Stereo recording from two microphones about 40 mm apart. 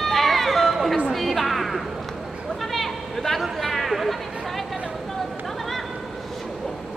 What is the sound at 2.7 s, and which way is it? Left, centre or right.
Chatter, centre.